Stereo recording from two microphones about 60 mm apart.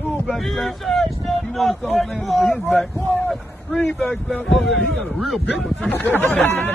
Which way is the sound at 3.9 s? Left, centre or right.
Centre.